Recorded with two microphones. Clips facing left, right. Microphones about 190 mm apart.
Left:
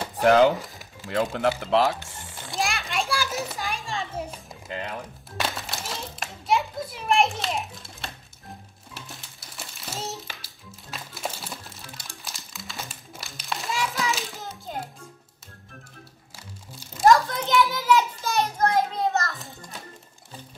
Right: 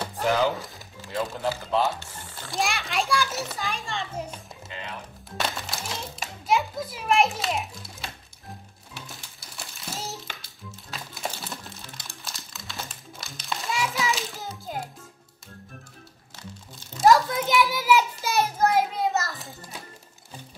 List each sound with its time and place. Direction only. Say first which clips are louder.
0.2 s speech: left 7 dB; 60° left (ahead or behind)
1.0 s speech: left 4 dB; 75° left (ahead or behind)
2.5 s children playing: right 1 dB; centre (ahead or behind)
5.4 s a child's voice: even; centre (ahead or behind)
8.9 s music: even; centre (ahead or behind)
13.3 s children playing: even; centre (ahead or behind)
17.0 s a sound: even; 5° right (ahead or behind)
17.7 s children playing: even; 10° right (ahead or behind)